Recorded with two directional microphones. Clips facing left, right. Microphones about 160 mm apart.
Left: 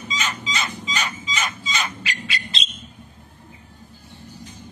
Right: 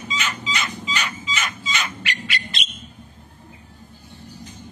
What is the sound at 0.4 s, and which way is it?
Fowl, 40° left (ahead or behind).